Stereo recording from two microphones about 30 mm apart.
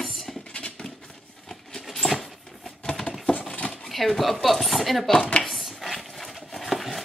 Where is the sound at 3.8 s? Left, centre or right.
Centre.